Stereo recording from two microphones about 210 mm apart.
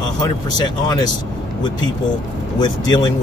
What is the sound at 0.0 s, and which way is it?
Speech, 20° left (ahead or behind).